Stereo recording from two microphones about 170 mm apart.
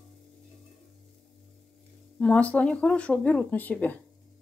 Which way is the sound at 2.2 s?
5° left (ahead or behind).